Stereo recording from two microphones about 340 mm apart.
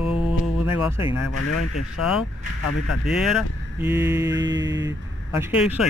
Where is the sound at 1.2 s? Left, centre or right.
Left.